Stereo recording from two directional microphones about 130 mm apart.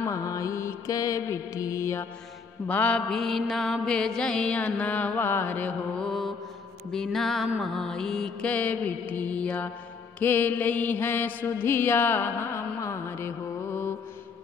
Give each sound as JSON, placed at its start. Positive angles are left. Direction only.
{"t": 0.0, "sound": "mantra", "side_deg": 25}
{"t": 2.7, "sound": "mantra", "side_deg": 10}